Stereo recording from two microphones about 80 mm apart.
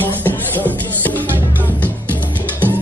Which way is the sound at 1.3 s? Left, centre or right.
Right.